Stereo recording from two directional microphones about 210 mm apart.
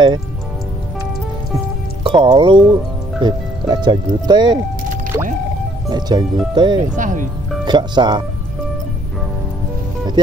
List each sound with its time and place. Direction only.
2.0 s speech: 25° right (ahead or behind)
5.9 s speech: 20° right (ahead or behind)
7.0 s speech: 40° right (ahead or behind)
7.6 s speech: 20° right (ahead or behind)
10.2 s speech: 20° right (ahead or behind)